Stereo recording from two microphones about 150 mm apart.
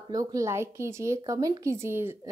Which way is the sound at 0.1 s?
20° right (ahead or behind).